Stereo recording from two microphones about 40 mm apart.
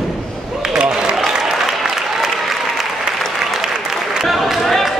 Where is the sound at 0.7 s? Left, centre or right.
Right.